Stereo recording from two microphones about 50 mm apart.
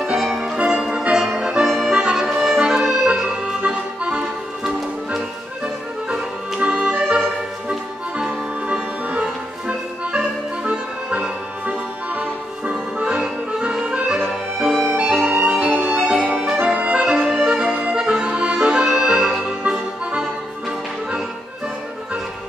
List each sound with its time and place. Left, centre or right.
0.0 s music: centre
2.4 s accordion: centre
6.6 s organ: right
8.2 s accordion: right
9.2 s music: centre
11.6 s accordion: right
13.2 s music: centre
16.6 s accordion: right; by 17.6 s centre
17.6 s music: right